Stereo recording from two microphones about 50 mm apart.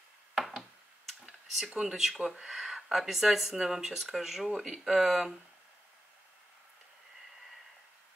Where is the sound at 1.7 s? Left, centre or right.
Centre.